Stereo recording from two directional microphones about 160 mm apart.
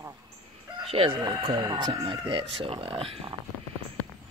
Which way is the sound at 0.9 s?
35° right (ahead or behind).